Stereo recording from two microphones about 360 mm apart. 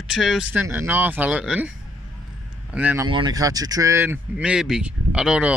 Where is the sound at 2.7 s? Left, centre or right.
Centre.